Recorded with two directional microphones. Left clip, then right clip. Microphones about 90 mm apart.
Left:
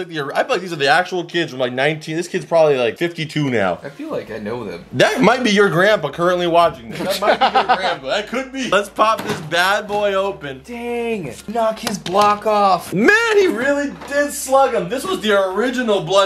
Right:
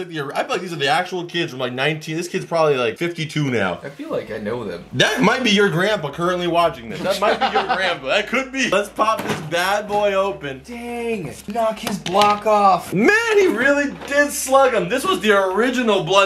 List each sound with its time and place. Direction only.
0.1 s speech: 20° left (ahead or behind)
4.9 s speech: 20° left (ahead or behind)
8.1 s speech: 5° left (ahead or behind)
8.6 s speech: 15° left (ahead or behind)
10.9 s speech: 25° left (ahead or behind)
13.7 s speech: 15° right (ahead or behind)
14.9 s speech: 5° left (ahead or behind)